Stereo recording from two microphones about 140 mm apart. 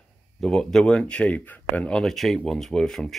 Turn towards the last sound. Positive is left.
turn(degrees=5)  # may be behind; listen again after turning